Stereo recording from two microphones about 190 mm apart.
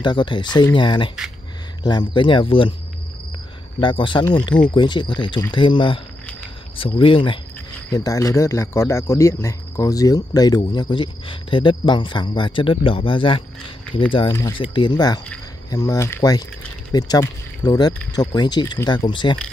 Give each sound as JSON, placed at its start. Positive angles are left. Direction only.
{"t": 0.0, "sound": "speech", "side_deg": 25}
{"t": 3.8, "sound": "speech", "side_deg": 25}
{"t": 7.0, "sound": "speech", "side_deg": 25}